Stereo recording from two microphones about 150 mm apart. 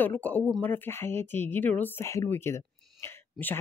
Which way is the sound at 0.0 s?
10° left (ahead or behind).